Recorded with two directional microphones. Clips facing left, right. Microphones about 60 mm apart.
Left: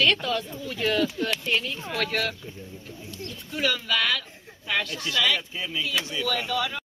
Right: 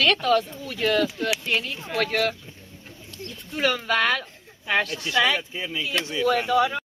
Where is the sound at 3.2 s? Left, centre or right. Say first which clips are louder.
Right 3 dB; right.